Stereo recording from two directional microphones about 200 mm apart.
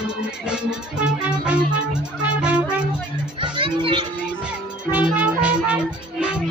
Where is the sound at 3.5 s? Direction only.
25° right (ahead or behind).